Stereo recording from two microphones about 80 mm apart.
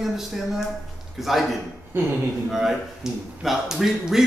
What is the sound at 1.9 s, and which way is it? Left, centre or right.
Speech, right.